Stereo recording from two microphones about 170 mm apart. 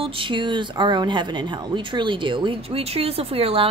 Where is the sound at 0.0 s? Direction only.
30° right (ahead or behind).